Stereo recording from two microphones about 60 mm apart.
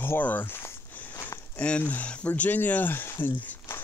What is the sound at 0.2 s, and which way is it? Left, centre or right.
Speech, left.